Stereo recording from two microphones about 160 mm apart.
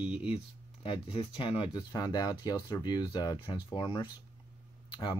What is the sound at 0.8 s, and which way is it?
Speech, 35° left (ahead or behind).